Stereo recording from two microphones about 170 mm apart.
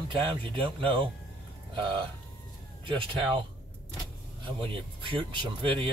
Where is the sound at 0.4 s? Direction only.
30° right (ahead or behind).